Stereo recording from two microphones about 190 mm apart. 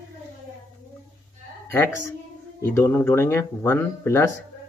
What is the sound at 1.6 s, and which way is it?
Speech, 10° left (ahead or behind).